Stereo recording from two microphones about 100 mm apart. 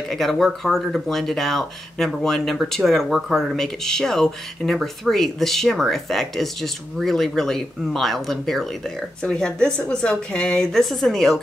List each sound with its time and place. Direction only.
0.1 s a woman's voice: centre (ahead or behind)